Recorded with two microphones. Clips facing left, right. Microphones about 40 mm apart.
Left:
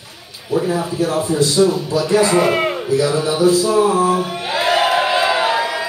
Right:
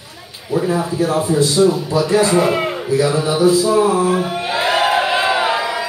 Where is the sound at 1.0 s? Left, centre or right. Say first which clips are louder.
Right 1 dB; right.